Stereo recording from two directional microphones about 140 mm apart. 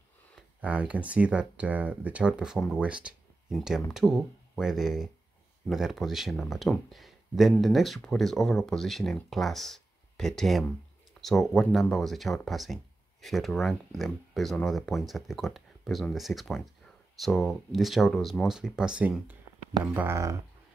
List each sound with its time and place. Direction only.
0.6 s speech: 10° right (ahead or behind)